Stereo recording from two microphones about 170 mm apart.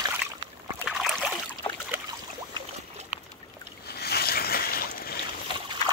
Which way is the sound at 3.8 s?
70° left (ahead or behind).